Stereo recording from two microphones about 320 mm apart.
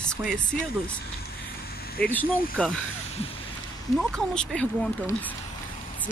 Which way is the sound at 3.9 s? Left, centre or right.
Centre.